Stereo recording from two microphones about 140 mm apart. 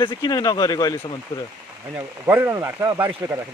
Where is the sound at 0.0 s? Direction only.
30° left (ahead or behind).